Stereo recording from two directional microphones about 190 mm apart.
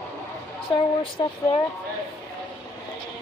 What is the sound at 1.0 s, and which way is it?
Speech, 30° left (ahead or behind).